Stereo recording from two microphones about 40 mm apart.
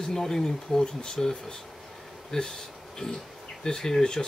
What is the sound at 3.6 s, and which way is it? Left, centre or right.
Speech, centre.